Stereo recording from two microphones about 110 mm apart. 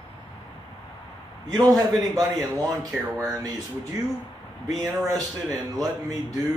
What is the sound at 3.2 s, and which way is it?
Speech, 35° right (ahead or behind).